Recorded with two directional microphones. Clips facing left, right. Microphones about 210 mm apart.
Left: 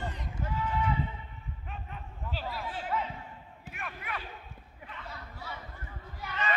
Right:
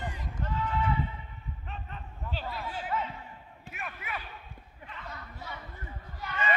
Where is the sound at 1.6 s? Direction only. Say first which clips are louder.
Even; 10° left (ahead or behind).